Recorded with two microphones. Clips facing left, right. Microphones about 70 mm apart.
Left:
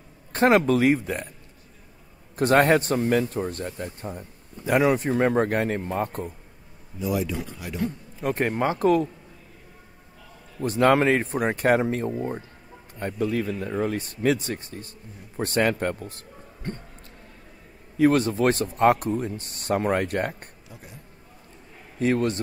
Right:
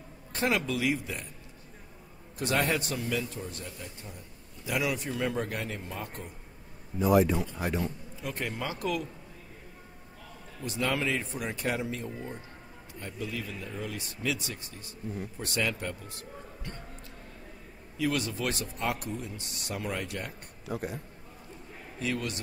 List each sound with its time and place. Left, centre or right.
0.3 s a man's voice: left
2.3 s a man's voice: left
7.0 s a man's voice: right
7.8 s a man's voice: left
10.6 s a man's voice: left
17.9 s a man's voice: left
20.6 s speech: right
22.0 s a man's voice: left